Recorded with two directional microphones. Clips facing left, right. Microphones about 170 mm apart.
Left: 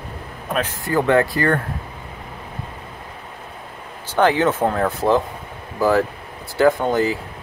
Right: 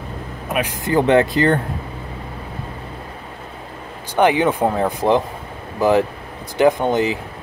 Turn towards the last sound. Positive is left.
turn(degrees=-20)  # may be behind; listen again after turning